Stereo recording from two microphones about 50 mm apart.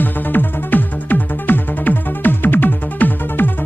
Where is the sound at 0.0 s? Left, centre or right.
Left.